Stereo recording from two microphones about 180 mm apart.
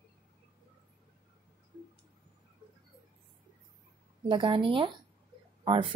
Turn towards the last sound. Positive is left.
turn(degrees=-30)  # may be behind; listen again after turning